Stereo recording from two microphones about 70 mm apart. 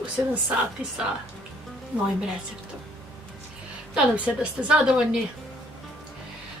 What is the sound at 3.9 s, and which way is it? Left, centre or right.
A woman's voice, centre.